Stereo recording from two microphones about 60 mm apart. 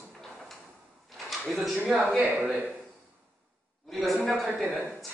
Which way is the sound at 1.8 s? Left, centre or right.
Right.